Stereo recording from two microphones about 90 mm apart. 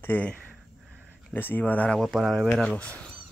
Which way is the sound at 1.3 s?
20° left (ahead or behind).